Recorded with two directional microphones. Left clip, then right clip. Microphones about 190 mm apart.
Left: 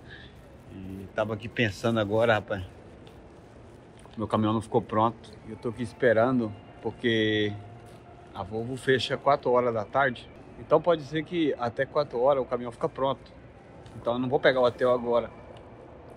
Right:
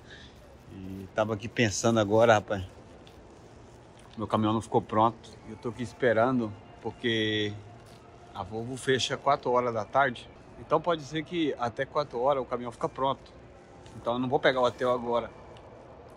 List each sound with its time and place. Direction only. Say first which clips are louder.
1.1 s a man's voice: right 1 dB; 50° right (ahead or behind)
4.2 s speech: left 1 dB; 30° right (ahead or behind)